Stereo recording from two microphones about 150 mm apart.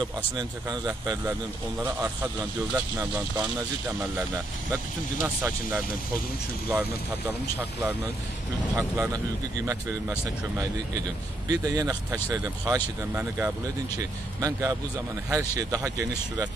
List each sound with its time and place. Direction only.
0.4 s speech: 25° right (ahead or behind)
2.7 s speech: 10° right (ahead or behind)
5.2 s speech: 20° right (ahead or behind)
11.6 s speech: 25° right (ahead or behind)